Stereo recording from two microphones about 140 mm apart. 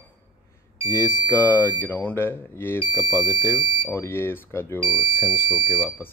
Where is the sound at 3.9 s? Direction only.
15° left (ahead or behind).